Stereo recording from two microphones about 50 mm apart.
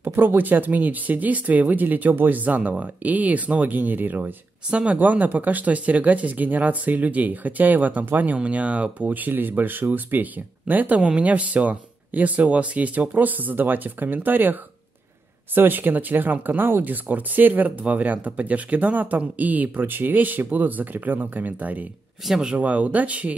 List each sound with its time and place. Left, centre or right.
0.0 s speech: right
4.6 s speech: right
4.9 s speech: right
8.4 s speech: right
9.1 s speech: right
11.0 s speech: right
22.3 s speech: centre
22.6 s speech: right